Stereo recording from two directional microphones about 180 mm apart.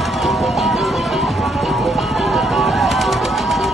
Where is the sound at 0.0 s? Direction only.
Centre (ahead or behind).